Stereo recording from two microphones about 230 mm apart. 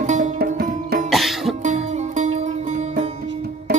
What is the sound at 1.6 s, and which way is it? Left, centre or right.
Music, right.